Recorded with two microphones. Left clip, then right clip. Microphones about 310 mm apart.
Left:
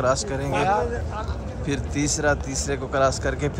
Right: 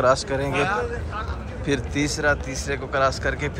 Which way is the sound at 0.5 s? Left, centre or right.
Left.